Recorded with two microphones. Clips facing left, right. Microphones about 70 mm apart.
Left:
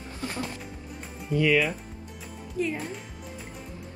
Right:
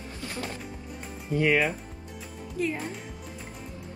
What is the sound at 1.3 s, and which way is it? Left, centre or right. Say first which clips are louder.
Speech: left 1 dB; right.